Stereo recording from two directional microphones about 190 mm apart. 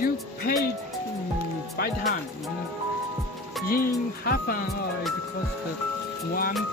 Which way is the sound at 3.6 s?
50° left (ahead or behind).